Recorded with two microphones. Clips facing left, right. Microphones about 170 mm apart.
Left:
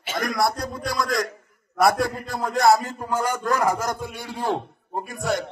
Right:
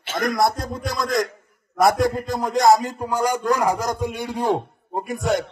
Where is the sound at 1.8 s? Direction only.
20° right (ahead or behind).